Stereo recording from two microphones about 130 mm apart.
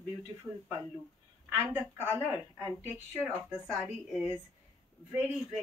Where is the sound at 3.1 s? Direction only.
15° right (ahead or behind).